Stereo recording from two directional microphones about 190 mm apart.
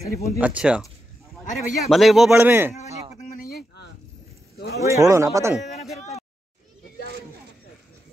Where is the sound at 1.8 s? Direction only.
Centre (ahead or behind).